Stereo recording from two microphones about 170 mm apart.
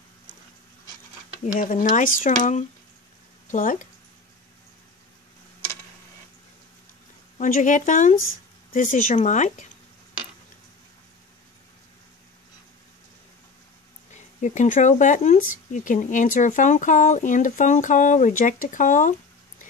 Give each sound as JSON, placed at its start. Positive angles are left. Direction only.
{"t": 1.5, "sound": "speech", "side_deg": 50}
{"t": 7.3, "sound": "speech", "side_deg": 50}
{"t": 14.1, "sound": "speech", "side_deg": 45}